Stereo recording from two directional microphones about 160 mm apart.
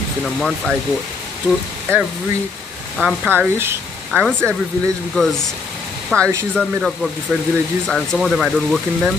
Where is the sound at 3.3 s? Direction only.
15° right (ahead or behind).